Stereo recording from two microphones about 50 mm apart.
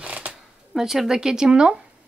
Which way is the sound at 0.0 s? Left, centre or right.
Right.